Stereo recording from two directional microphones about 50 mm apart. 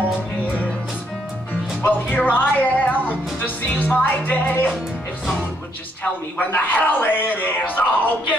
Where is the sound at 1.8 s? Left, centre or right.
Left.